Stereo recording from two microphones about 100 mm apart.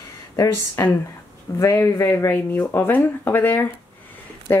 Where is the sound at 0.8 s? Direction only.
30° left (ahead or behind).